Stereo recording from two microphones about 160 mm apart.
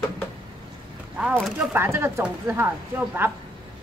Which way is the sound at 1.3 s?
Centre (ahead or behind).